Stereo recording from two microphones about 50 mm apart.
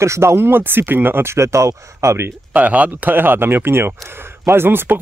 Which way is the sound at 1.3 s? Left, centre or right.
Right.